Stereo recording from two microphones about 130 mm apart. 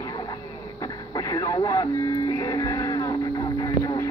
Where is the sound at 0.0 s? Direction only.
30° left (ahead or behind).